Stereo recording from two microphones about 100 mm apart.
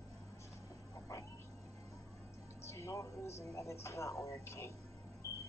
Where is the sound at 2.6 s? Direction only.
30° left (ahead or behind).